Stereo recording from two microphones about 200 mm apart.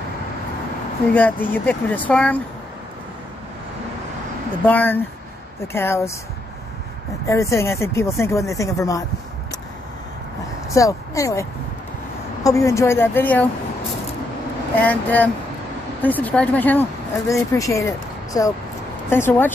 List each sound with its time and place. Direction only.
1.1 s speech: 10° left (ahead or behind)
4.6 s speech: 10° left (ahead or behind)
7.2 s speech: 15° left (ahead or behind)
10.7 s speech: 15° left (ahead or behind)
12.4 s speech: 15° left (ahead or behind)
14.8 s speech: 10° left (ahead or behind)